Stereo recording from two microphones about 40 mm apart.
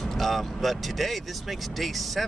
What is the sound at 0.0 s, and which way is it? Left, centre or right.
Speech, centre.